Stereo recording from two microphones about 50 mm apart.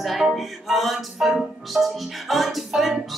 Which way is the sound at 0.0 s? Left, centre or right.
Centre.